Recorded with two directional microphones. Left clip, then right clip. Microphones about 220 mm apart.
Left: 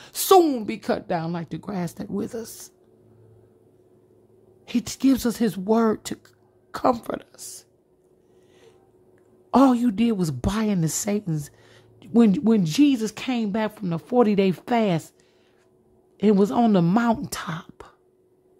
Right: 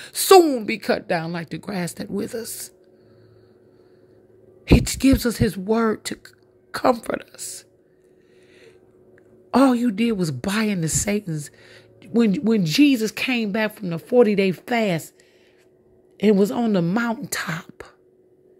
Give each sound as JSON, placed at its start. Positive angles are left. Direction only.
{"t": 0.0, "sound": "a sound", "side_deg": 15}
{"t": 0.7, "sound": "a woman's voice", "side_deg": 10}
{"t": 4.6, "sound": "a woman's voice", "side_deg": 10}
{"t": 9.5, "sound": "a woman's voice", "side_deg": 15}
{"t": 16.2, "sound": "a man's voice", "side_deg": 15}